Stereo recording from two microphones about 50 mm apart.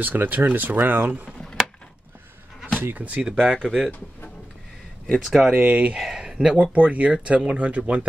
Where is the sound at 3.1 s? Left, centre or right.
Right.